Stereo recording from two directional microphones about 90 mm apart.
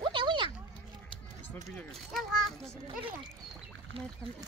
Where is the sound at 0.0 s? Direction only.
65° right (ahead or behind).